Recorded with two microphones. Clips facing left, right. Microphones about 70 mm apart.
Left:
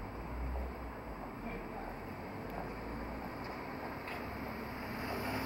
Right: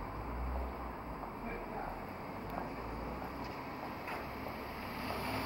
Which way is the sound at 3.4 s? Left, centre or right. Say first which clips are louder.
Even; left.